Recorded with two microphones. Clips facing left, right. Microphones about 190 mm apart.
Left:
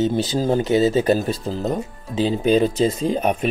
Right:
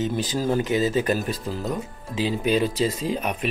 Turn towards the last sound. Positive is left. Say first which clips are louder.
# left 5 dB
turn(degrees=40)  # may be behind; listen again after turning